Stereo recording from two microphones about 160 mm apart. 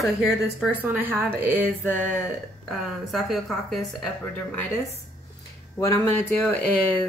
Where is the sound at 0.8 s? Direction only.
15° right (ahead or behind).